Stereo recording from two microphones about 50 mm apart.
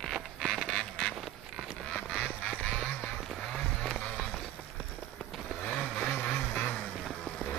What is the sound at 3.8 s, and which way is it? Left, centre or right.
Music, centre.